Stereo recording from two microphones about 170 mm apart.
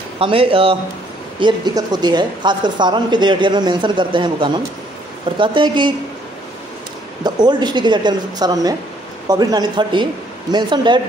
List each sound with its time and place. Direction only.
0.2 s speech: 35° right (ahead or behind)
7.2 s speech: 25° right (ahead or behind)